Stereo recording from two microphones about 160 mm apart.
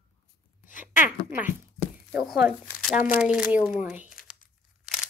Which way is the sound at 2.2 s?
Centre (ahead or behind).